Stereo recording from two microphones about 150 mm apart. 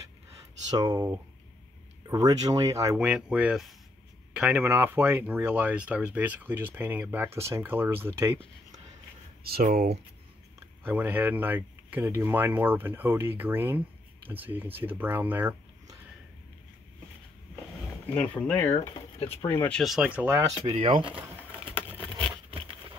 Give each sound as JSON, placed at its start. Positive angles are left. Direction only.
{"t": 0.7, "sound": "speech", "side_deg": -25}
{"t": 3.0, "sound": "speech", "side_deg": -10}
{"t": 9.4, "sound": "speech", "side_deg": -90}
{"t": 10.9, "sound": "speech", "side_deg": -10}
{"t": 18.1, "sound": "speech", "side_deg": 10}
{"t": 19.8, "sound": "speech", "side_deg": -5}
{"t": 20.6, "sound": "speech", "side_deg": -40}
{"t": 21.7, "sound": "a sound", "side_deg": 10}